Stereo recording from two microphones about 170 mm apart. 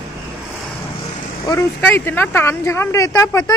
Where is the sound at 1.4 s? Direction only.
20° left (ahead or behind).